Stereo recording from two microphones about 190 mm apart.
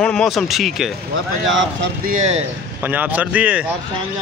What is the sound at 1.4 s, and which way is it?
Speech, 80° right.